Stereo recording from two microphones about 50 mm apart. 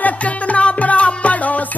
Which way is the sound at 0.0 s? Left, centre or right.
Left.